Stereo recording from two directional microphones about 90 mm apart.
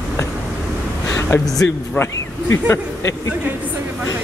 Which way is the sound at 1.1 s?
30° left (ahead or behind).